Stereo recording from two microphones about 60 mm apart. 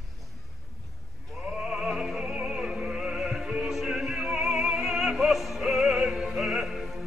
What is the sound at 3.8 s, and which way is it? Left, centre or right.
Opera, centre.